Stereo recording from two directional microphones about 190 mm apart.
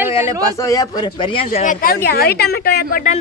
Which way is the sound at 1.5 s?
45° left (ahead or behind).